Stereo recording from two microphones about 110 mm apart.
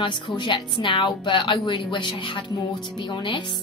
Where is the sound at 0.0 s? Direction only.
45° left (ahead or behind).